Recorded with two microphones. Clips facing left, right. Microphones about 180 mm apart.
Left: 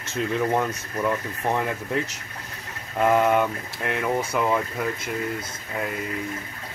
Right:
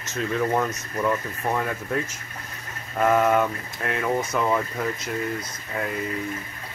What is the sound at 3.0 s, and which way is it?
Speech, 10° left (ahead or behind).